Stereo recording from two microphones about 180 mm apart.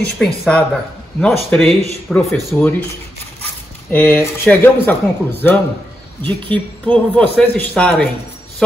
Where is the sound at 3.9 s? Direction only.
15° left (ahead or behind).